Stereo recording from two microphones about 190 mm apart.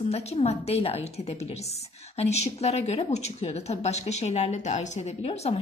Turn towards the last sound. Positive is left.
turn(degrees=35)  # may be behind; listen again after turning